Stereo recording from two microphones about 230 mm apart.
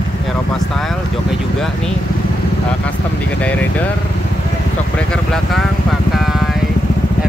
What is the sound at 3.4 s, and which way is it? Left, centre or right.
Speech, centre.